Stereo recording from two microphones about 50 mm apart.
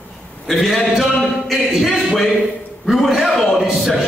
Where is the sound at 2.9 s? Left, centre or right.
Centre.